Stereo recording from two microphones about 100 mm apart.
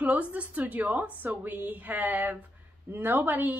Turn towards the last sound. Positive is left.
turn(degrees=-20)  # may be behind; listen again after turning